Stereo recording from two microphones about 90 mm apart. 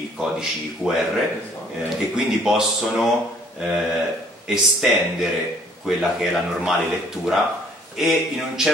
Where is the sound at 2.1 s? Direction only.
5° right (ahead or behind).